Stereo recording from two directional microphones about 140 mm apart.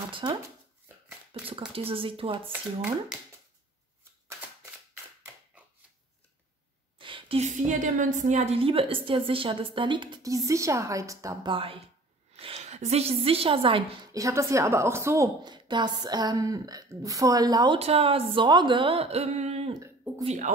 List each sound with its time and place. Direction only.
0.1 s speech: 40° right (ahead or behind)
1.3 s a sound: 40° right (ahead or behind)
1.7 s a woman's voice: 40° right (ahead or behind)
2.5 s speech: 15° right (ahead or behind)
7.0 s a sound: 40° right (ahead or behind)
7.5 s a woman's voice: 65° right (ahead or behind); by 11.5 s 25° right (ahead or behind)
11.5 s a woman's voice: 40° right (ahead or behind)
14.1 s a woman's voice: 20° right (ahead or behind)
15.4 s a woman's voice: 30° right (ahead or behind)
17.7 s a woman's voice: 45° right (ahead or behind)
19.7 s a sound: 30° right (ahead or behind)
20.2 s speech: 60° right (ahead or behind)